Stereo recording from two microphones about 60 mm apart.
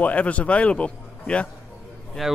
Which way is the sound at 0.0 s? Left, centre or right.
Left.